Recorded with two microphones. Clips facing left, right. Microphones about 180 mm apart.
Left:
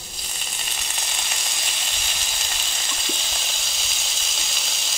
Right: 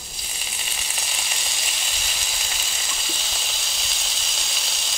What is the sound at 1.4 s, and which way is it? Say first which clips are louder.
Frying: even; centre (ahead or behind).